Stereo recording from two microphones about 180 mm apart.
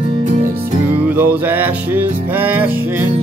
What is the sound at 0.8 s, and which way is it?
Music, 10° right (ahead or behind).